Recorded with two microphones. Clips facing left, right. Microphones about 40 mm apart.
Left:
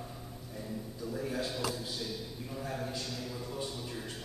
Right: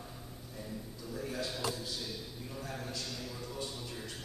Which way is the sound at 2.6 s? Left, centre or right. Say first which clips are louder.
Left 4 dB; centre.